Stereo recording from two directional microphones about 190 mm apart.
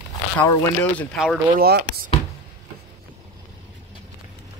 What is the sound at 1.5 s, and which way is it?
Speech, 55° right (ahead or behind).